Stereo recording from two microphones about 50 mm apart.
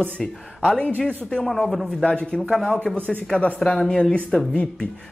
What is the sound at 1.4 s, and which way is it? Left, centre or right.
Speech, centre.